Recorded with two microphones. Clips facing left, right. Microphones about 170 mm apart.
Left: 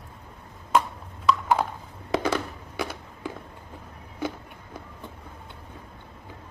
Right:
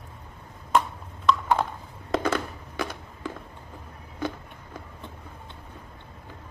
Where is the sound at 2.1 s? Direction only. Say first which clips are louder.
Even; 10° left (ahead or behind).